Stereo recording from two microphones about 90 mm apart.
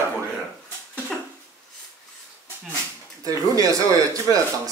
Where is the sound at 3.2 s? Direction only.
40° right (ahead or behind).